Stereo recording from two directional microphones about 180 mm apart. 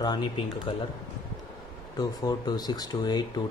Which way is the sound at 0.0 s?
25° left (ahead or behind).